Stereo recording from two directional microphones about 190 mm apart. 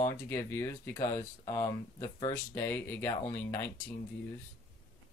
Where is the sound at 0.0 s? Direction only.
15° left (ahead or behind).